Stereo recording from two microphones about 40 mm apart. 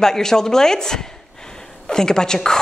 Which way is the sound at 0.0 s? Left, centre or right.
Centre.